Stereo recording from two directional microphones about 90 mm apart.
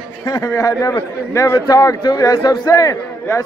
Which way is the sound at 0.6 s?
40° left (ahead or behind).